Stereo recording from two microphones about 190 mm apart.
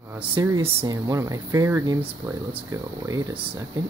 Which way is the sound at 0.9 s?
20° right (ahead or behind).